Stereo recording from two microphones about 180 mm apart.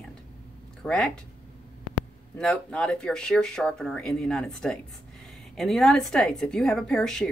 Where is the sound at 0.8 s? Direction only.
5° left (ahead or behind).